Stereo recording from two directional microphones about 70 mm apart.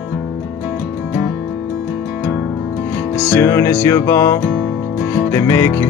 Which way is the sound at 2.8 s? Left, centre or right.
Left.